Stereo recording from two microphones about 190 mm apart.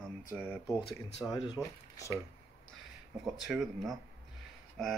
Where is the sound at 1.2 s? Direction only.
20° left (ahead or behind).